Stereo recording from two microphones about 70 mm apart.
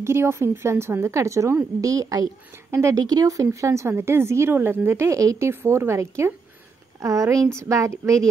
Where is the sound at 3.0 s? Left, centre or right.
Right.